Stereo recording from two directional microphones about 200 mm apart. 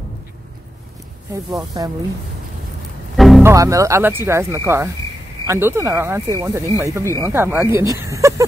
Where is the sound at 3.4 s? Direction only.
15° right (ahead or behind).